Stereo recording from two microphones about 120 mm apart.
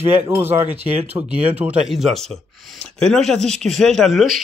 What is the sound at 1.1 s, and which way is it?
Speech, 15° right (ahead or behind).